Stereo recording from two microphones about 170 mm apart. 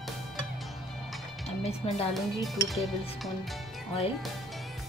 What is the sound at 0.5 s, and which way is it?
Music, centre (ahead or behind).